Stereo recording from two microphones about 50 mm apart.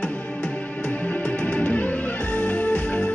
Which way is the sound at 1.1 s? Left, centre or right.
Left.